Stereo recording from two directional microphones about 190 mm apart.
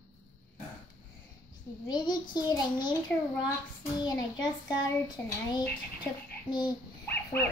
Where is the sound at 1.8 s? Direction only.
20° left (ahead or behind).